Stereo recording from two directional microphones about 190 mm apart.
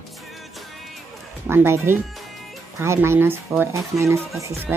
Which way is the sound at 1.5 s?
10° right (ahead or behind).